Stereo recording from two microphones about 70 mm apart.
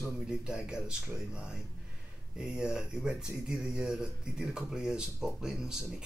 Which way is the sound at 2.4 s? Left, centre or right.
Centre.